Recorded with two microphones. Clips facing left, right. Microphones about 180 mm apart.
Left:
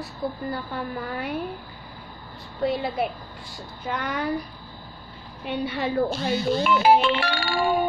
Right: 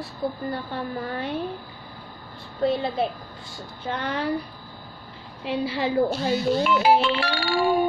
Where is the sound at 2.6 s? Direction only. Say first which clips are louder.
Right 2 dB; 25° right (ahead or behind).